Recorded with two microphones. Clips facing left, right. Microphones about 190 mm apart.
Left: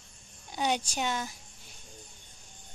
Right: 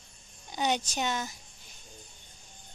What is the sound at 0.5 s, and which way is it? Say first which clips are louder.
Speech: even; 5° left (ahead or behind).